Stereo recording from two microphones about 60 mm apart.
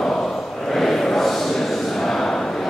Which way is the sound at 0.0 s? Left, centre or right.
Centre.